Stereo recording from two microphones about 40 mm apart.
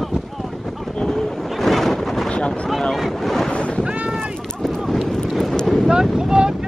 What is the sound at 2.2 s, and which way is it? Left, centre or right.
Boat, left.